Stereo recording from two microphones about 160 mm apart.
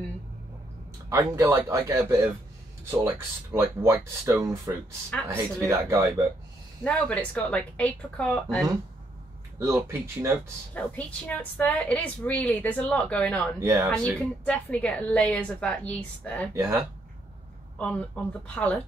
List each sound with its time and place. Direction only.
1.1 s speech: 20° right (ahead or behind)
6.8 s a woman's voice: 5° left (ahead or behind)
9.6 s speech: 15° right (ahead or behind)
10.7 s a woman's voice: 10° left (ahead or behind)
13.6 s speech: 20° right (ahead or behind)
14.4 s a woman's voice: 5° left (ahead or behind)
16.5 s speech: 15° right (ahead or behind)
17.7 s a woman's voice: 10° left (ahead or behind)